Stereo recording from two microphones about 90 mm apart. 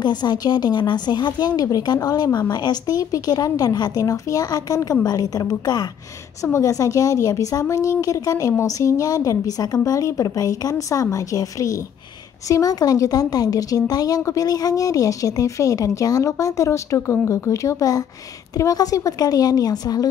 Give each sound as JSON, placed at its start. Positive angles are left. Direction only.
{"t": 0.0, "sound": "a woman's voice", "side_deg": 55}